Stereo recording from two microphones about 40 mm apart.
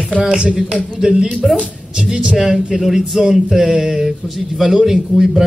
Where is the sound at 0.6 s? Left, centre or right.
Centre.